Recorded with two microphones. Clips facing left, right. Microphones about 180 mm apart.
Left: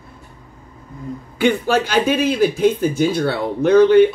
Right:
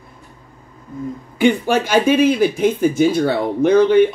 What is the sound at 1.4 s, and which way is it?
Speech, 10° right (ahead or behind).